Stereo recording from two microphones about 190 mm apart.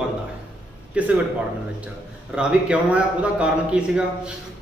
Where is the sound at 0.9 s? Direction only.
5° right (ahead or behind).